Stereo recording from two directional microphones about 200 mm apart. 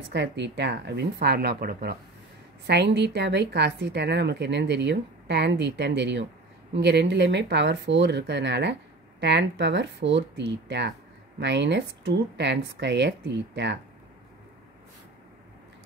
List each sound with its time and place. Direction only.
0.1 s speech: 60° right (ahead or behind)